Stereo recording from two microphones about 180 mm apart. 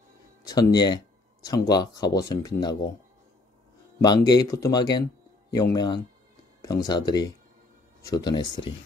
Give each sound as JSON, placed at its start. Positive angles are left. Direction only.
{"t": 0.5, "sound": "speech", "side_deg": 20}
{"t": 4.0, "sound": "speech", "side_deg": 25}